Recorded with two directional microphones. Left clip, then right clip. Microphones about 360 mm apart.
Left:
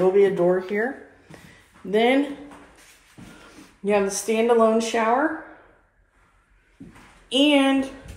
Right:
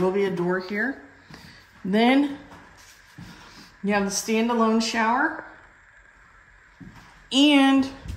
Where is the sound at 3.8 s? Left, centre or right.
Centre.